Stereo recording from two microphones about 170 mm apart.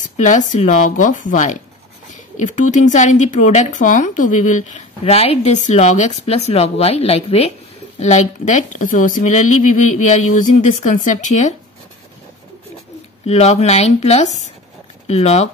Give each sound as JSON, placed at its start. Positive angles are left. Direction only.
{"t": 0.0, "sound": "speech", "side_deg": 45}
{"t": 13.2, "sound": "speech", "side_deg": 40}